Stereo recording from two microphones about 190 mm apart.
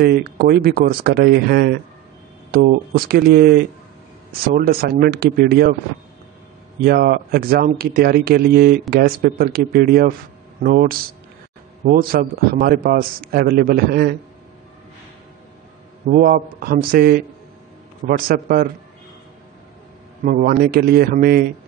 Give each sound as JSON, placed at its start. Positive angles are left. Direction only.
{"t": 0.0, "sound": "a man's voice", "side_deg": -55}
{"t": 6.8, "sound": "a man's voice", "side_deg": -55}
{"t": 16.1, "sound": "a man's voice", "side_deg": -50}
{"t": 20.2, "sound": "a man's voice", "side_deg": -50}